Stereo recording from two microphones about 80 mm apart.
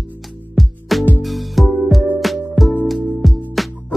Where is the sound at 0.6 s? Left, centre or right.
Centre.